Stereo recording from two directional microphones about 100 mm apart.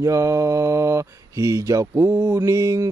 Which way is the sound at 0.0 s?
30° right (ahead or behind).